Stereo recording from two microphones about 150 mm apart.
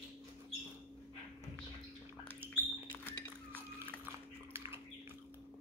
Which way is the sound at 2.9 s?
10° left (ahead or behind).